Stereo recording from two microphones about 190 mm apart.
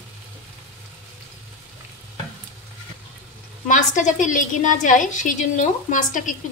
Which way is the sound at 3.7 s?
40° left (ahead or behind).